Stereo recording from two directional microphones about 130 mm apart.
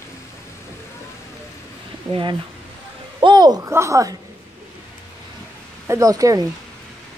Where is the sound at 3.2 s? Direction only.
35° right (ahead or behind).